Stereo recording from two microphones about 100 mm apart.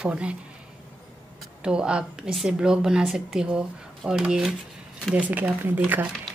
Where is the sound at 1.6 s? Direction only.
10° right (ahead or behind).